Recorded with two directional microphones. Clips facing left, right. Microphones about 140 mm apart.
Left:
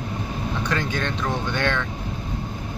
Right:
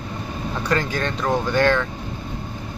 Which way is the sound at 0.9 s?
5° right (ahead or behind).